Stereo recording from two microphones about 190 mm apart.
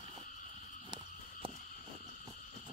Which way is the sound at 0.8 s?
25° right (ahead or behind).